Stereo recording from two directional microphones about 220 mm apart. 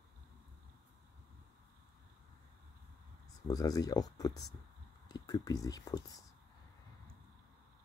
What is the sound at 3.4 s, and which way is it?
Speech, 15° left (ahead or behind).